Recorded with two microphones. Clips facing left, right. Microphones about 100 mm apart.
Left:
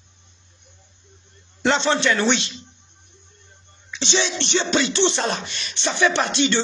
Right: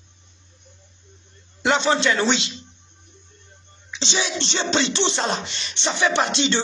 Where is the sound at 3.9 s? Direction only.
15° right (ahead or behind).